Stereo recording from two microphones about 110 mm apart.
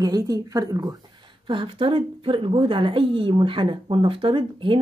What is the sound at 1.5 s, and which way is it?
A woman's voice, 50° right (ahead or behind).